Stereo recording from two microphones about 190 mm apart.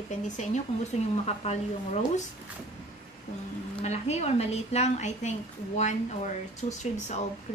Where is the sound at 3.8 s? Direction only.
35° left (ahead or behind).